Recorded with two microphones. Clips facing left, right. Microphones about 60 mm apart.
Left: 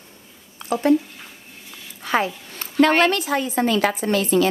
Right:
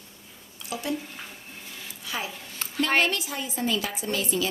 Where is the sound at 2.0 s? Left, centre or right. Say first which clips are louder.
Left 12 dB; left.